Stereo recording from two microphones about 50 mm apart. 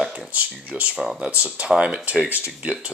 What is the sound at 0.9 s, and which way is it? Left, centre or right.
Speech, centre.